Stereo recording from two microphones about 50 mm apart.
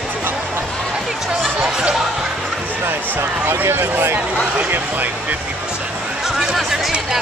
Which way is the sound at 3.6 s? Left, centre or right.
Right.